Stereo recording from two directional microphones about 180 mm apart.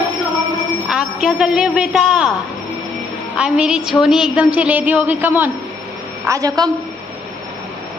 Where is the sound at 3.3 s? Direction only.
5° right (ahead or behind).